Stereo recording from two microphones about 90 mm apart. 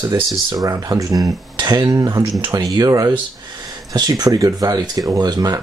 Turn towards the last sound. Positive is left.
turn(degrees=-45)  # may be behind; listen again after turning